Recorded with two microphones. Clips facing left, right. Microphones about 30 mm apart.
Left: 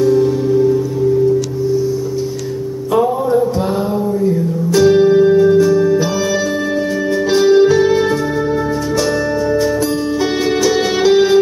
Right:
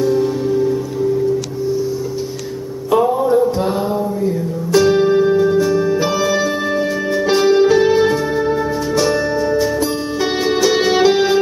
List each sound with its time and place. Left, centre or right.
0.0 s music: centre
2.9 s music: centre
5.8 s organ: centre
7.2 s music: centre
10.6 s music: centre